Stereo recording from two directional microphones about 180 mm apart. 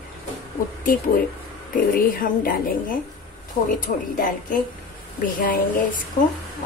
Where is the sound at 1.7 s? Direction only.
50° left (ahead or behind).